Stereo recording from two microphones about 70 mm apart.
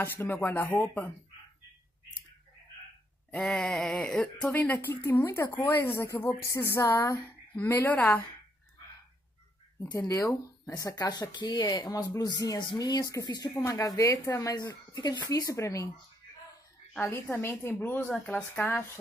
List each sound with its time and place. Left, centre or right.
0.0 s speech: left
3.3 s speech: centre
4.5 s speech: left
4.7 s speech: left
7.6 s speech: left
10.0 s speech: left
11.1 s speech: left
13.7 s a woman's voice: left
14.5 s speech: left
15.4 s a woman's voice: left
17.0 s speech: left